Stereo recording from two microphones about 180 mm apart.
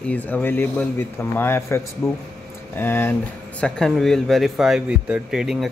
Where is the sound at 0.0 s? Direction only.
10° left (ahead or behind).